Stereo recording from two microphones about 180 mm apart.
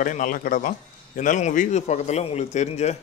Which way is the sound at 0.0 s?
45° left (ahead or behind).